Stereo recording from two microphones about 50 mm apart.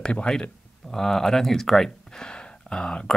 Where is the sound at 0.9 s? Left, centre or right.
Centre.